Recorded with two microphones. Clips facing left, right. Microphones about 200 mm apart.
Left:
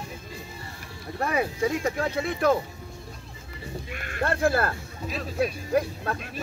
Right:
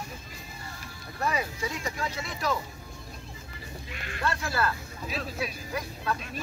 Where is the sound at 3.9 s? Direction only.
50° left (ahead or behind).